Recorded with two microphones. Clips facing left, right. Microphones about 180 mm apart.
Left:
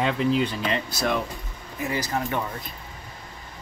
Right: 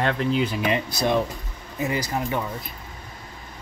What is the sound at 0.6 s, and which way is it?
Speech, 15° right (ahead or behind).